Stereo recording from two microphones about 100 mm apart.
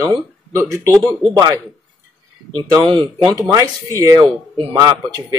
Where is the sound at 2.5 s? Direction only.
45° right (ahead or behind).